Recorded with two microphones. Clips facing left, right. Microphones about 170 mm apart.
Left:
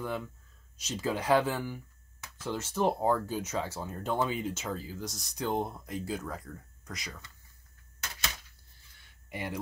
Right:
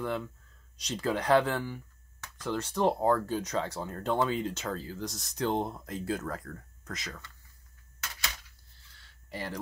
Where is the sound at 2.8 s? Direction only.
10° left (ahead or behind).